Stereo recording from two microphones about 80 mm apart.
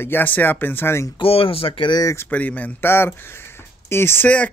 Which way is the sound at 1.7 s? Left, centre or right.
Left.